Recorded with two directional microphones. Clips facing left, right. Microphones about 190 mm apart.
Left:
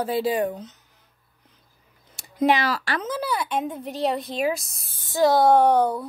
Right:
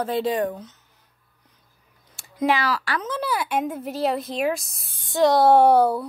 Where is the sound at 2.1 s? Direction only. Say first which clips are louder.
Left 2 dB; 20° left (ahead or behind).